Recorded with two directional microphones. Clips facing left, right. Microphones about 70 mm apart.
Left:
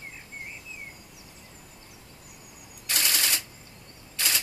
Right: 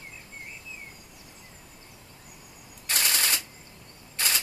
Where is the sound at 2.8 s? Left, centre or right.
Right.